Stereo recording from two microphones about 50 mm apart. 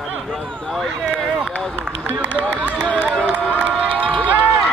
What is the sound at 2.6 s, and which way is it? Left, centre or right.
Run, right.